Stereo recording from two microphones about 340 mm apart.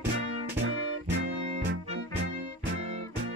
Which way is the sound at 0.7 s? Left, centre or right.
Right.